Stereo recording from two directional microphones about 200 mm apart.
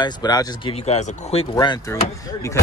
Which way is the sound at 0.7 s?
35° left (ahead or behind).